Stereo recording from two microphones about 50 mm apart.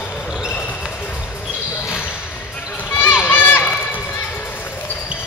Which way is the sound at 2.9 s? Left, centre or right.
Left.